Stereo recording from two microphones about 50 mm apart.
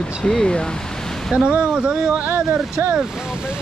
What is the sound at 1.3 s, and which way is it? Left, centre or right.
Speech, centre.